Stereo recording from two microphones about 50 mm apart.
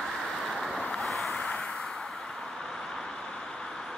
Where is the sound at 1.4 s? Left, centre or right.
Left.